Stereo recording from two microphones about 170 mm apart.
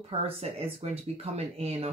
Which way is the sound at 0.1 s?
35° right (ahead or behind).